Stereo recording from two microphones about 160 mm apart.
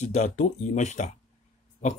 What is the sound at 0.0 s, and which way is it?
Speech, 45° left (ahead or behind).